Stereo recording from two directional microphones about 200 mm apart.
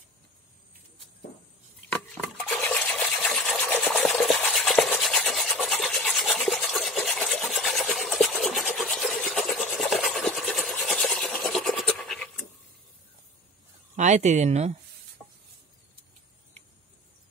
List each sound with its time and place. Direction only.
1.9 s a sound: 5° left (ahead or behind)
2.6 s sewing machine: 5° left (ahead or behind)
9.8 s filing: centre (ahead or behind)
13.9 s speech: 35° right (ahead or behind)